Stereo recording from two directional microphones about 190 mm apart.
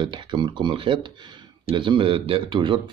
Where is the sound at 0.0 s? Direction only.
25° right (ahead or behind).